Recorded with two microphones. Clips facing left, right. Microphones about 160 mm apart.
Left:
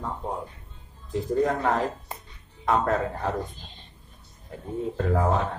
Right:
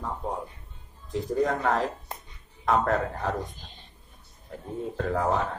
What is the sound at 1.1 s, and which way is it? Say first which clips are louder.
A man's voice: left 2 dB; centre (ahead or behind).